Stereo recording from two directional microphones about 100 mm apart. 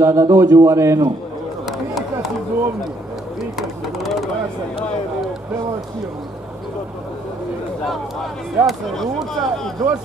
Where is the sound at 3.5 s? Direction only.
Centre (ahead or behind).